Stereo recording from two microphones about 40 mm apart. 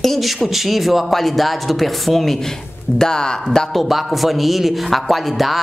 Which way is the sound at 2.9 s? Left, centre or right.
Centre.